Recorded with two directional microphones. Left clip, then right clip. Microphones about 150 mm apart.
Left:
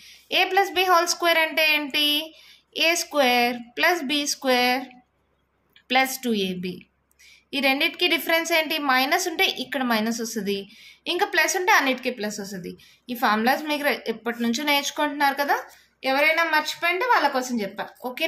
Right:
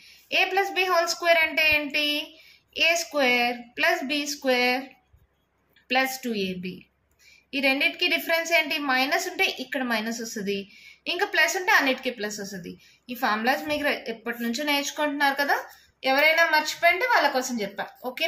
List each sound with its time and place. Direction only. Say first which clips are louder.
0.0 s a woman's voice: left 2 dB; 50° left (ahead or behind)
5.9 s a woman's voice: left 3 dB; 55° left (ahead or behind); by 18.2 s 30° left (ahead or behind)